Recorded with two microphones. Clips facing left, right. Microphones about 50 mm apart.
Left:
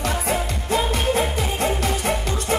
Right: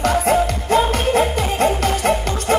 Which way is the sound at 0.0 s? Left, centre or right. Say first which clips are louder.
Right 8 dB; right.